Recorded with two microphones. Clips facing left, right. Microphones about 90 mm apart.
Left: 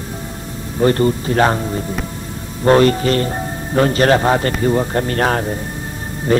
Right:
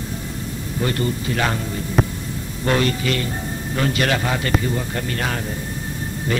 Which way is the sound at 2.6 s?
40° left (ahead or behind).